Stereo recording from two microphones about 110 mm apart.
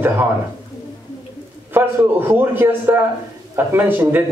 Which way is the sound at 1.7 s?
20° right (ahead or behind).